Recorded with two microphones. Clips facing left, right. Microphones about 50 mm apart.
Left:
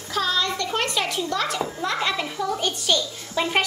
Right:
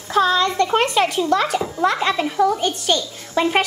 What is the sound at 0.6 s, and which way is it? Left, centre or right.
A child's voice, right.